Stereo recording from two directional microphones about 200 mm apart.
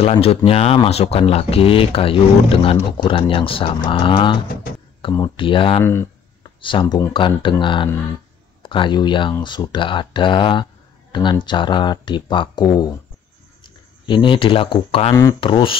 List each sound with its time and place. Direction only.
0.0 s speech: 30° left (ahead or behind)
14.0 s speech: 25° left (ahead or behind)